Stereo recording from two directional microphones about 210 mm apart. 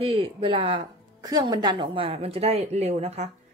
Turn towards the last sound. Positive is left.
turn(degrees=-30)  # may be behind; listen again after turning